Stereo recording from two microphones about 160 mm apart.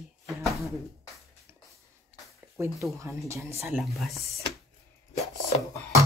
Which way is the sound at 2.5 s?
20° right (ahead or behind).